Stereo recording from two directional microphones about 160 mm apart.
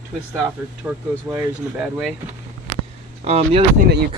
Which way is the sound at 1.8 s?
5° right (ahead or behind).